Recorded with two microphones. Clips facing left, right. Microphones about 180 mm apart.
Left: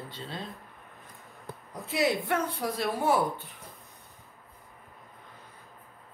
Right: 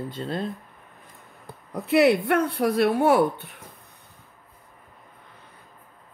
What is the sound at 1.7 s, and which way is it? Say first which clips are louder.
A woman's voice: right 9 dB; 65° right (ahead or behind).